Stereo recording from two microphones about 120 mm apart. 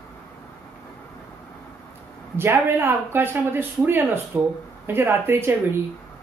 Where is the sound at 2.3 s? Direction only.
20° right (ahead or behind).